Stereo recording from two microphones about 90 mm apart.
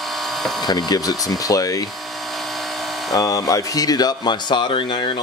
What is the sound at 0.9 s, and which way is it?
Speech, 45° left (ahead or behind).